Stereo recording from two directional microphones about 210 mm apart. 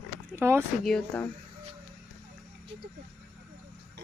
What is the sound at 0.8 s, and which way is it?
Speech, 5° left (ahead or behind).